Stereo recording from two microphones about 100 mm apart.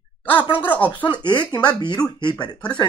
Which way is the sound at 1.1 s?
50° left (ahead or behind).